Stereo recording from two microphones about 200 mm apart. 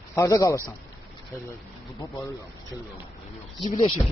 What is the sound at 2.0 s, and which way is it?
Speech, 15° left (ahead or behind).